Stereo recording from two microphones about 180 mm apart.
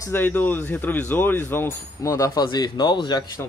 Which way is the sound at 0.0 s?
10° left (ahead or behind).